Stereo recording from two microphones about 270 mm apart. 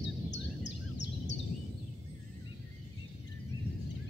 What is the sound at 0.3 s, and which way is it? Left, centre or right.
Bird, left.